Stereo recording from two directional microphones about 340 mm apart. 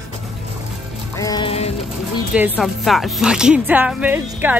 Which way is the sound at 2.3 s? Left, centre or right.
Centre.